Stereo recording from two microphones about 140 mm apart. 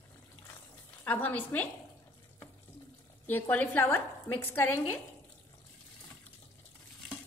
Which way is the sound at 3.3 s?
10° left (ahead or behind).